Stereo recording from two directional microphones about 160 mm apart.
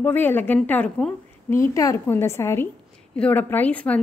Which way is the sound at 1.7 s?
20° left (ahead or behind).